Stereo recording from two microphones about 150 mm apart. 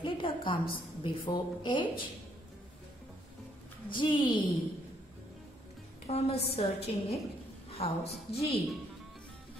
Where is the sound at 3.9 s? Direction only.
35° left (ahead or behind).